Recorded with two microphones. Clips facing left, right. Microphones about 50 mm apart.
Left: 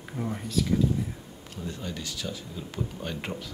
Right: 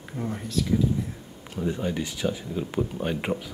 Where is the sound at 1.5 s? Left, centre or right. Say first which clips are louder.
Right 9 dB; centre.